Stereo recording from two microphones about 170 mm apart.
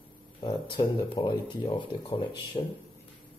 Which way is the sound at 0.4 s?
30° left (ahead or behind).